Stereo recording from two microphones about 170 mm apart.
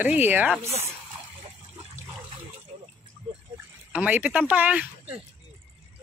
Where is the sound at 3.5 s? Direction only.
10° right (ahead or behind).